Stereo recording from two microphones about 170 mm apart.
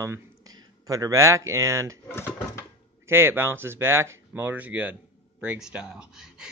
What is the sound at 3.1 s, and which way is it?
Speech, 15° right (ahead or behind).